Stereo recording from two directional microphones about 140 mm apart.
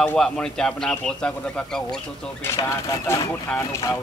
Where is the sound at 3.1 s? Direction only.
20° left (ahead or behind).